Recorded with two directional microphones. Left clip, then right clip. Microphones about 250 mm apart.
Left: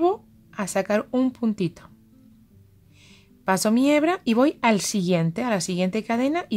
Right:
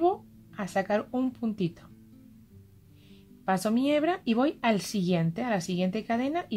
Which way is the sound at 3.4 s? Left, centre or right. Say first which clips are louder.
Left 6 dB; left.